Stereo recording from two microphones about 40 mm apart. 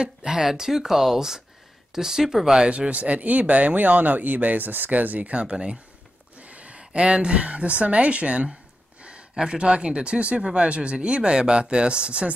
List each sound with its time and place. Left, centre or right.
0.0 s speech: centre
2.7 s speech: right
5.3 s speech: right